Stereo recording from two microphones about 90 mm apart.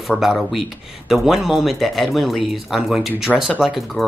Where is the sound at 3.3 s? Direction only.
15° right (ahead or behind).